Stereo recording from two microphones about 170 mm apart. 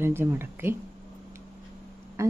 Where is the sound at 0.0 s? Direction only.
15° right (ahead or behind).